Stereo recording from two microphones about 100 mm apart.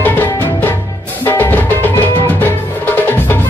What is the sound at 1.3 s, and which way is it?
Music, 20° left (ahead or behind).